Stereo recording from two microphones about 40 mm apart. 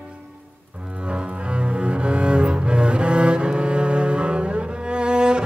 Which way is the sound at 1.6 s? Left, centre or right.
Right.